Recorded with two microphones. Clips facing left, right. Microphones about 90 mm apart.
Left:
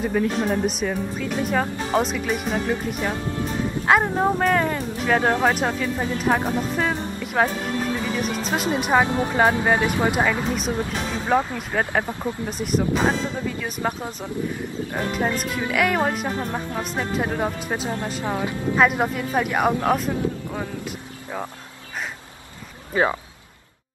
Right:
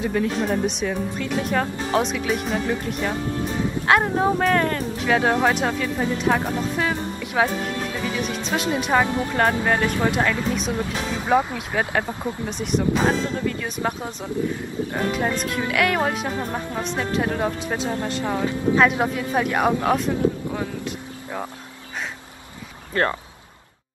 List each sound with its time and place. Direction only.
0.0 s a woman's voice: centre (ahead or behind)
11.2 s a woman's voice: 5° right (ahead or behind)
14.0 s speech: 15° left (ahead or behind)
15.1 s a woman's voice: centre (ahead or behind)
18.2 s speech: 15° left (ahead or behind)
18.8 s speech: centre (ahead or behind)
22.9 s speech: 5° left (ahead or behind)